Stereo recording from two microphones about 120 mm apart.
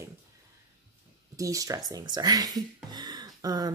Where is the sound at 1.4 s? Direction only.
30° right (ahead or behind).